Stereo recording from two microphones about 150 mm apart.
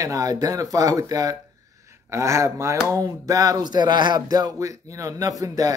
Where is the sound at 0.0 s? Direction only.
25° right (ahead or behind).